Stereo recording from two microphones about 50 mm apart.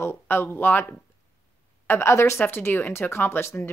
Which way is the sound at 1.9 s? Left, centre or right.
Left.